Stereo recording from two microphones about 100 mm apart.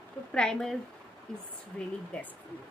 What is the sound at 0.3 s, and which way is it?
A woman's voice, 5° left (ahead or behind).